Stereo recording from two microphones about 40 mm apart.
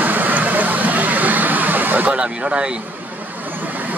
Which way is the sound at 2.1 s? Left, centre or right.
Right.